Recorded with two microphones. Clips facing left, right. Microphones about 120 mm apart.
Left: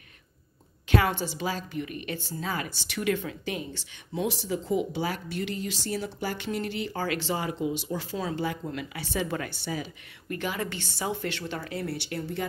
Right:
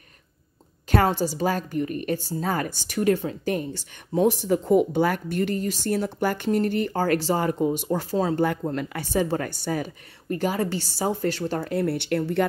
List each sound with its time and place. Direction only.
0.8 s a woman's voice: 40° right (ahead or behind)
8.5 s a woman's voice: 50° right (ahead or behind)